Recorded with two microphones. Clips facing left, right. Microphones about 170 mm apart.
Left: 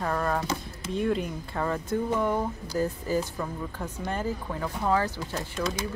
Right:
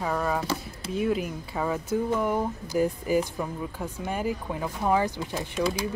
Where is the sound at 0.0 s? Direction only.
5° right (ahead or behind).